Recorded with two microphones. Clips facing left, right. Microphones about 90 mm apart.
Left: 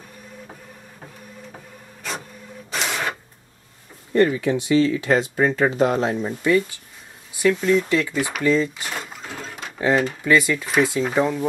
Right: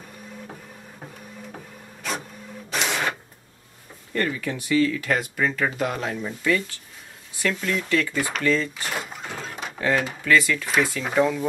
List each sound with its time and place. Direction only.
2.7 s printer: centre (ahead or behind)
4.1 s speech: 20° left (ahead or behind)
7.4 s speech: 10° left (ahead or behind)
8.9 s a sound: 5° right (ahead or behind)
9.8 s speech: 20° left (ahead or behind)
11.1 s speech: 10° left (ahead or behind)